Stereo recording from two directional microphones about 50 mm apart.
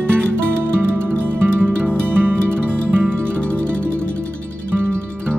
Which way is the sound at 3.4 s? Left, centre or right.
Left.